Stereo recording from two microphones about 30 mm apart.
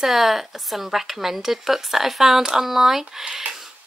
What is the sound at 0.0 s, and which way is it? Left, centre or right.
Speech, centre.